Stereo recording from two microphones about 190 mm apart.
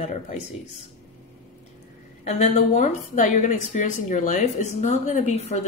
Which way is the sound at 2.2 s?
35° left (ahead or behind).